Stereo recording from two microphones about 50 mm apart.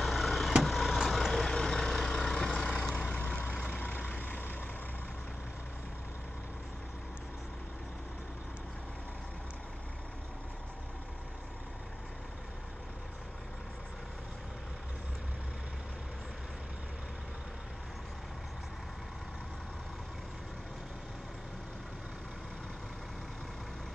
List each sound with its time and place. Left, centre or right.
0.0 s vehicle: centre; by 3.7 s left
3.7 s vehicle: left
4.2 s vehicle: left